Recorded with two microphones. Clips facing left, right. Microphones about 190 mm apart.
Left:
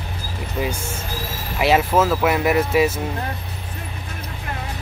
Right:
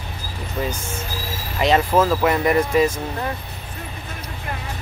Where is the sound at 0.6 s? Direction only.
10° left (ahead or behind).